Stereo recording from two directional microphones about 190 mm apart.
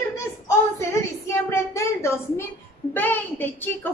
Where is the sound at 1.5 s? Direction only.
15° left (ahead or behind).